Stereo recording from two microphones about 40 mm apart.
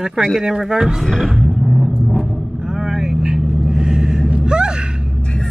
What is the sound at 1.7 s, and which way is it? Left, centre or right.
Vehicle, centre.